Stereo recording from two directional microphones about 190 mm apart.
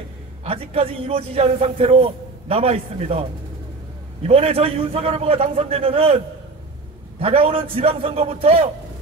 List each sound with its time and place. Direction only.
0.4 s a man's voice: 30° right (ahead or behind)
4.3 s a man's voice: 30° right (ahead or behind)